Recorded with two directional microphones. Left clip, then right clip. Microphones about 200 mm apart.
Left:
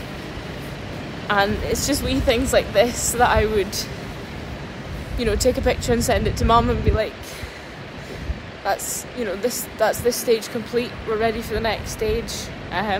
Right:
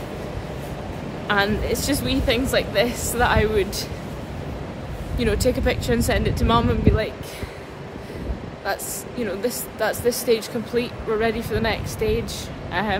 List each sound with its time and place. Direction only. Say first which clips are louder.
1.2 s speech: left 1 dB; 10° right (ahead or behind)
5.2 s speech: left 2 dB; 5° right (ahead or behind)
8.7 s speech: left 3 dB; 5° right (ahead or behind)